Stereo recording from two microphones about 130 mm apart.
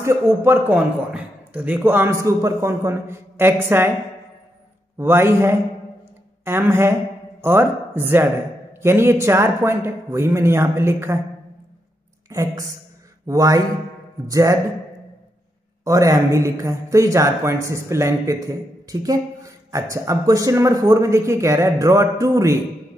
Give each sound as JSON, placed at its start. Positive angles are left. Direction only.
{"t": 0.0, "sound": "a man's voice", "side_deg": -20}
{"t": 4.9, "sound": "a man's voice", "side_deg": -20}
{"t": 12.3, "sound": "a man's voice", "side_deg": -25}
{"t": 15.8, "sound": "a man's voice", "side_deg": -25}